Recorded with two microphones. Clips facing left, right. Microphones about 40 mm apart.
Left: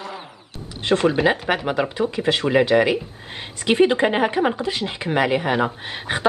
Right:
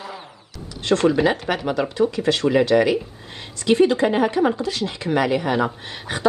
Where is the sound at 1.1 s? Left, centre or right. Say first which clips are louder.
Left 1 dB; left.